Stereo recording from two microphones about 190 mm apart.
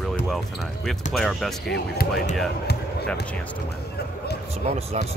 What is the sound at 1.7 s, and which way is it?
Speech, 60° left (ahead or behind).